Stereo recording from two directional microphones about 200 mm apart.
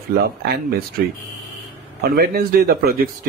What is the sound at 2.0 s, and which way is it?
A man's voice, 50° right (ahead or behind).